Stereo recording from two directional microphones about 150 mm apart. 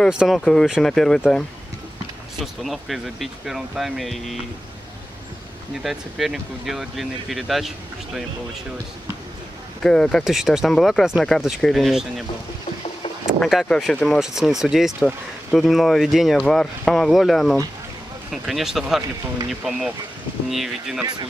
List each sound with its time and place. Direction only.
0.1 s speech: centre (ahead or behind)
2.4 s speech: centre (ahead or behind)
5.8 s speech: centre (ahead or behind)
9.8 s speech: 5° left (ahead or behind)
13.4 s speech: centre (ahead or behind)